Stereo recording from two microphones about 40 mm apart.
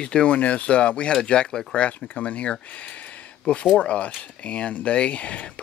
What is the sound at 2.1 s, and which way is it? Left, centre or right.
Speech, left.